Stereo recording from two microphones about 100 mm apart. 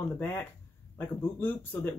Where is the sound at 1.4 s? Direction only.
20° left (ahead or behind).